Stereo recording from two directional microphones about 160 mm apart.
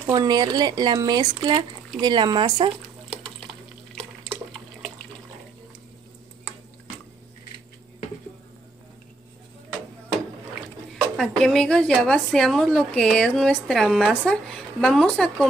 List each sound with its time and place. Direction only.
0.1 s speech: 25° right (ahead or behind)
11.1 s speech: 5° left (ahead or behind)